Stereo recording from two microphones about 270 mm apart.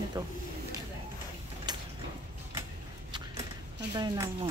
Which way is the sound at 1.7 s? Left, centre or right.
Centre.